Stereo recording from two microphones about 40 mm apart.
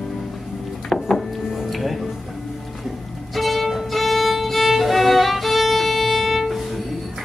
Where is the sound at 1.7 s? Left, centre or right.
Centre.